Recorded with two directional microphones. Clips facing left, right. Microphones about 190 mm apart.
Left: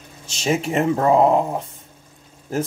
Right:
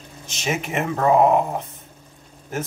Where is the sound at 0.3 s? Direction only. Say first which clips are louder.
Left 5 dB; 30° left (ahead or behind).